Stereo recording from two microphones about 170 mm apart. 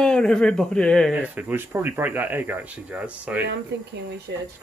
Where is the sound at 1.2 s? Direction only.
10° right (ahead or behind).